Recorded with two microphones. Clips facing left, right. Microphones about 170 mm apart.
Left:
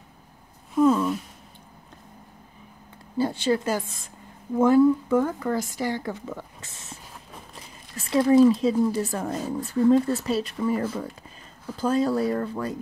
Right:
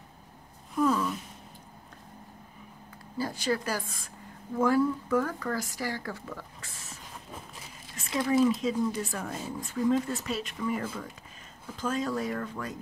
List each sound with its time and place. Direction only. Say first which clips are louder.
0.7 s speech: left 7 dB; 25° left (ahead or behind)
3.2 s speech: left 7 dB; 25° left (ahead or behind)